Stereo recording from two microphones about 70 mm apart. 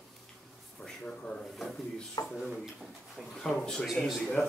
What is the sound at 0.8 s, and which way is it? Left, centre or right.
Drawer open or close, centre.